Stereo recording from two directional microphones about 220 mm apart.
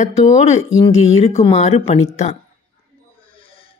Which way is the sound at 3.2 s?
25° left (ahead or behind).